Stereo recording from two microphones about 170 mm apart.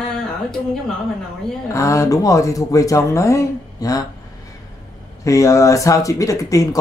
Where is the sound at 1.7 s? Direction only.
20° left (ahead or behind).